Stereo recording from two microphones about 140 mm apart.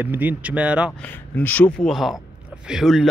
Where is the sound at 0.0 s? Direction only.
15° right (ahead or behind).